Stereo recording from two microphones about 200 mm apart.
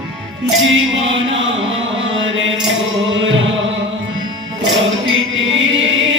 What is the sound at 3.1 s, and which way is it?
Music, 70° right (ahead or behind).